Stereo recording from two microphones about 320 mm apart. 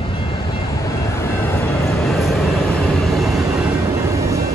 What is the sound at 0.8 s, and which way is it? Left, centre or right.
Vehicle, centre.